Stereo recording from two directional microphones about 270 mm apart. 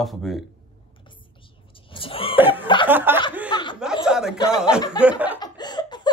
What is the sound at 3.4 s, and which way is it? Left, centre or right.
Snicker, centre.